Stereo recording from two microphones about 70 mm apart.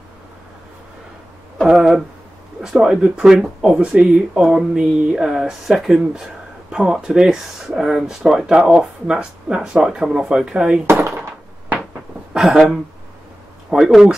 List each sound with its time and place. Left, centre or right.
1.7 s speech: centre
10.9 s a sound: right
12.4 s speech: centre